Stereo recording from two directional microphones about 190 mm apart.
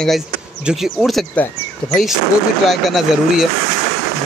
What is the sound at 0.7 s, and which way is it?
Speech, centre (ahead or behind).